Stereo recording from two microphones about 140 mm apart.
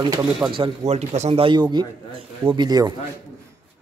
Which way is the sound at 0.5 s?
45° right (ahead or behind).